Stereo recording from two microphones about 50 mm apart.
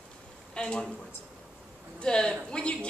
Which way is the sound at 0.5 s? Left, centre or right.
Centre.